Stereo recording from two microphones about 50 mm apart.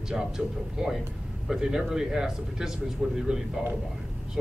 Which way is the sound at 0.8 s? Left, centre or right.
Centre.